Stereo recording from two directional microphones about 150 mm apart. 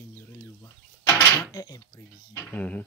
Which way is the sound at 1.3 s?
25° left (ahead or behind).